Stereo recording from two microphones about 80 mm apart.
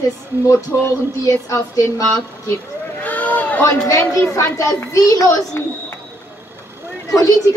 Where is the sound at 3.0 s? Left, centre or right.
Centre.